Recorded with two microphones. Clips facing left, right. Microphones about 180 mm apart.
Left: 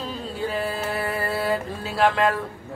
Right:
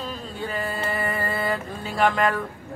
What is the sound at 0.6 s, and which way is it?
Music, 5° left (ahead or behind).